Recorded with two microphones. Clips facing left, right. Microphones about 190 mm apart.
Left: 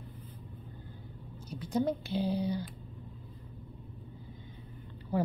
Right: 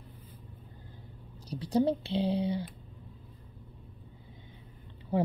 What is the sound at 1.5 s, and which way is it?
Speech, 35° right (ahead or behind).